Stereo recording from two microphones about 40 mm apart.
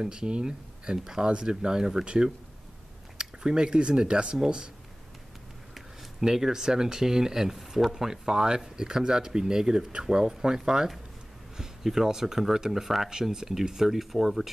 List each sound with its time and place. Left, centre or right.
0.0 s speech: right
6.2 s speech: centre
13.1 s speech: centre